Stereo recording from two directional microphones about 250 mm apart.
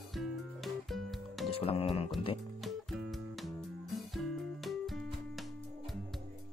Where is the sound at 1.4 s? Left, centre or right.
Left.